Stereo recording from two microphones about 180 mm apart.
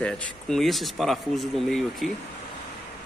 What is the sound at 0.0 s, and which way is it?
Speech, 5° left (ahead or behind).